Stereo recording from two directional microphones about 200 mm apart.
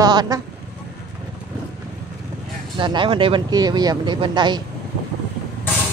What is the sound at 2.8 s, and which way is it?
Speech, 25° right (ahead or behind).